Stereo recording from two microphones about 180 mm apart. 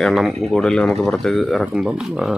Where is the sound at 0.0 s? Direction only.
Centre (ahead or behind).